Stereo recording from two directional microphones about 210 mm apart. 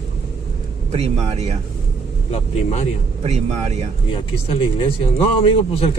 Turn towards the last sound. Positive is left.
turn(degrees=25)  # may be behind; listen again after turning